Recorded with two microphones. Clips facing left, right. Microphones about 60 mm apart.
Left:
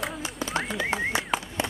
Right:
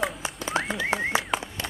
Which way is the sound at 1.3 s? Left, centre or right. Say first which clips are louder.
Even; centre.